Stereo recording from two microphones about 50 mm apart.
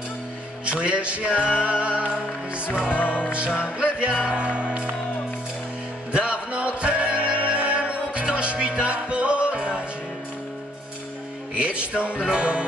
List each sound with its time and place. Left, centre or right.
0.7 s music: right
2.9 s music: left
3.7 s music: right
6.1 s music: right
11.5 s music: right